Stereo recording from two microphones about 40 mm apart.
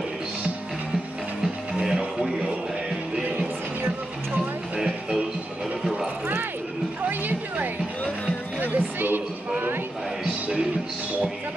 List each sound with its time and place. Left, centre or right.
1.4 s music: centre
4.7 s music: centre
7.0 s music: right